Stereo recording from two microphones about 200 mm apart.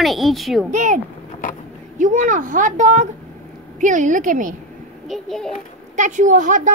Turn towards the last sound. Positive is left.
turn(degrees=-40)  # may be behind; listen again after turning